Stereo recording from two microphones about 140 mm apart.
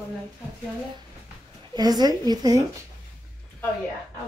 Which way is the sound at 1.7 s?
30° right (ahead or behind).